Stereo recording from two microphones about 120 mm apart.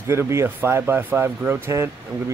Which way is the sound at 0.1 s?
20° right (ahead or behind).